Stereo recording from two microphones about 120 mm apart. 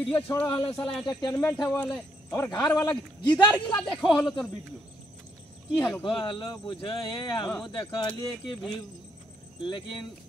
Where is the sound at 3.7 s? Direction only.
5° left (ahead or behind).